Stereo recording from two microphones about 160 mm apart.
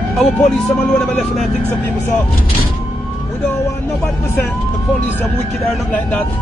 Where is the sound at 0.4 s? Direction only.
50° left (ahead or behind).